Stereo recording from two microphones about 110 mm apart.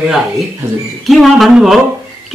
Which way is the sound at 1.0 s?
Centre (ahead or behind).